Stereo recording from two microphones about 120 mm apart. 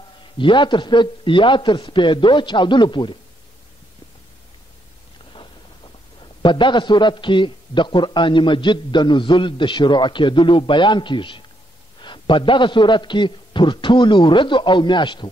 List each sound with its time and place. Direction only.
0.4 s a man's voice: 40° left (ahead or behind)
6.4 s a man's voice: 40° left (ahead or behind)